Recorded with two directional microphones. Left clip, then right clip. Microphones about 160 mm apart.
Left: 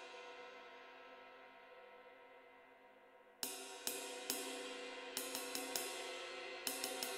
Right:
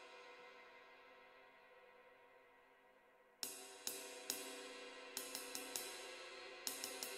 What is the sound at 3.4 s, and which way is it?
Music, 15° left (ahead or behind).